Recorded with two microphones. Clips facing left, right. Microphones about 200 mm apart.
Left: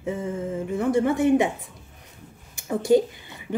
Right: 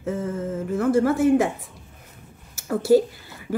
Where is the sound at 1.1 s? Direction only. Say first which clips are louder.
Right 1 dB; centre (ahead or behind).